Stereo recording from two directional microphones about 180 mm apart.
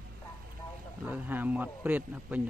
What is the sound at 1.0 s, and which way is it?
Speech, 10° right (ahead or behind).